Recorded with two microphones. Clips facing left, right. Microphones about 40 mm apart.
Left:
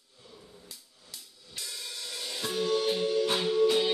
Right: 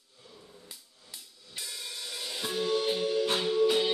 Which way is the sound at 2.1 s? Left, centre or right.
Centre.